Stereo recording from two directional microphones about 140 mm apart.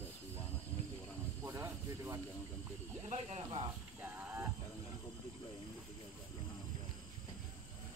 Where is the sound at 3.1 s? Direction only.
50° right (ahead or behind).